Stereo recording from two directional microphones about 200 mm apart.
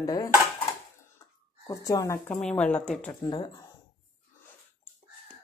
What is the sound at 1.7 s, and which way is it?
Speech, 15° left (ahead or behind).